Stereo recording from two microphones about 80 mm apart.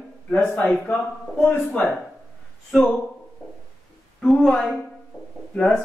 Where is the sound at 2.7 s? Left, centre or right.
Centre.